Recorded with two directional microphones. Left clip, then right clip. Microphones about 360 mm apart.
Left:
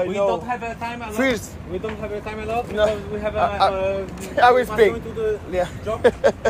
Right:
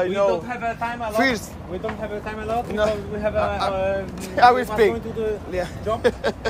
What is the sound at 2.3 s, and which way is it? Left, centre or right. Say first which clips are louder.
Speech: right 1 dB; centre.